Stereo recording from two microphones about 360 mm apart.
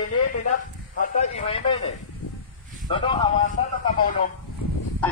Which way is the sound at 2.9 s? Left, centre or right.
Centre.